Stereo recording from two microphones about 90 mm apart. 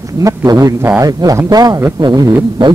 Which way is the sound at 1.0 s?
45° right (ahead or behind).